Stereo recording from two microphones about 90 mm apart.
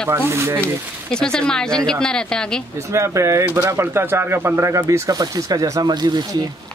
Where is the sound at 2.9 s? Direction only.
35° right (ahead or behind); by 6.2 s 50° right (ahead or behind).